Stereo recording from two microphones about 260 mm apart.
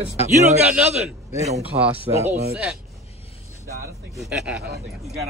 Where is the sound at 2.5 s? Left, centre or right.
Centre.